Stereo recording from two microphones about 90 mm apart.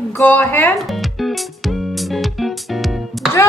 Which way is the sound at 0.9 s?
Centre (ahead or behind).